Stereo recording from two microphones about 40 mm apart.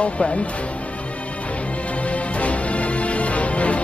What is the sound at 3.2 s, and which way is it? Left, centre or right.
Music, left.